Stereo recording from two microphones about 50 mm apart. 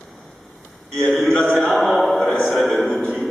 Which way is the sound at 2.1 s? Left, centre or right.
Centre.